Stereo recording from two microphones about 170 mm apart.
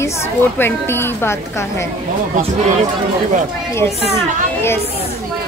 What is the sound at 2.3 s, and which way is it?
Speech, 45° right (ahead or behind).